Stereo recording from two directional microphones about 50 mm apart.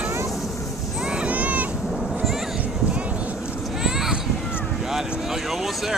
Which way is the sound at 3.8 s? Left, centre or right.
Centre.